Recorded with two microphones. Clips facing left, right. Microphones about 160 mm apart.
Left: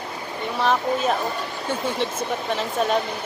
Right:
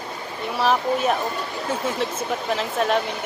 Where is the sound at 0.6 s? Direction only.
5° right (ahead or behind).